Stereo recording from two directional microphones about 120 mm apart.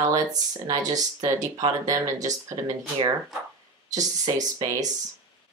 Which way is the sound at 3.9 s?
30° right (ahead or behind).